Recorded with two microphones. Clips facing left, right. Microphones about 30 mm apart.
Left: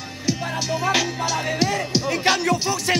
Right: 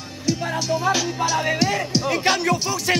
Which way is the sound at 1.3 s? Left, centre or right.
Centre.